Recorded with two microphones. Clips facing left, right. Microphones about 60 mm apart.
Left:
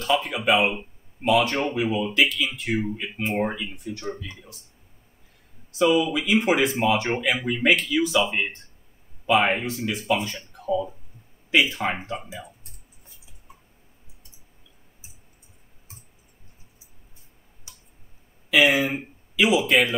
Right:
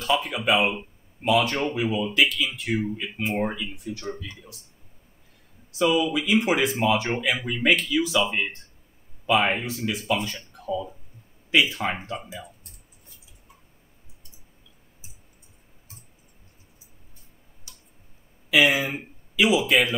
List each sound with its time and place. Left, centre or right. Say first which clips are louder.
0.0 s speech: left 1 dB; centre
5.7 s speech: left 2 dB; centre
17.7 s tick: left 1 dB; left
18.5 s speech: left 1 dB; centre